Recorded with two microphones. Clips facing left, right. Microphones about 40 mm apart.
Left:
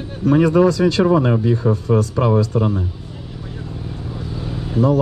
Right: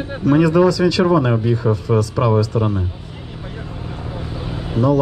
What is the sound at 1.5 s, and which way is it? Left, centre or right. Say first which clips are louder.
Speech: even; right.